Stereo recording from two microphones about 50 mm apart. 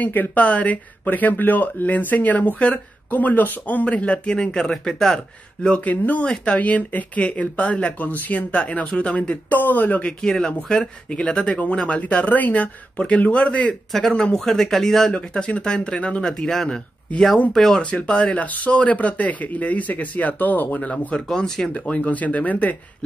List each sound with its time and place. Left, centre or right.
0.0 s speech: left
4.4 s speech: centre
5.9 s speech: left
8.5 s speech: left
9.5 s speech: left
10.0 s speech: centre
12.0 s speech: left
14.1 s speech: centre
17.8 s speech: left
21.3 s speech: centre
21.7 s speech: left